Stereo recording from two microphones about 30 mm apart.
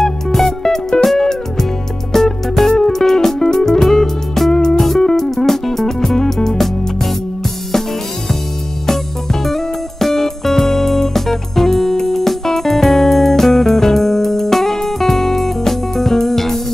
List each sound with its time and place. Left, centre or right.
0.3 s music: centre
8.8 s music: centre